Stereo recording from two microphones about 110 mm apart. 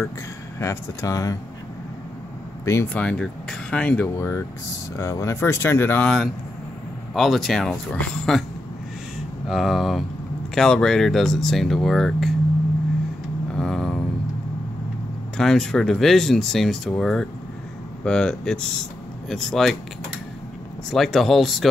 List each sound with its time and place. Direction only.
0.6 s speech: 30° left (ahead or behind)
2.6 s speech: 25° left (ahead or behind)
2.9 s speech: 10° left (ahead or behind)
4.2 s speech: 25° left (ahead or behind)
6.0 s speech: 5° left (ahead or behind)
9.5 s speech: centre (ahead or behind)
13.6 s a sound: 5° left (ahead or behind)
15.3 s speech: 5° left (ahead or behind)
20.9 s speech: centre (ahead or behind)